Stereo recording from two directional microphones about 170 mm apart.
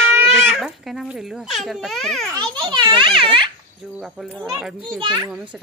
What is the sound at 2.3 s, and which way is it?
A child's voice, 25° right (ahead or behind).